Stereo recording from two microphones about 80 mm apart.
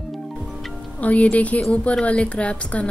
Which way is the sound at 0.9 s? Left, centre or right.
Centre.